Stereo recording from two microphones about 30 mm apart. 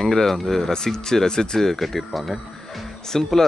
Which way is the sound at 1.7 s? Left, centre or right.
Centre.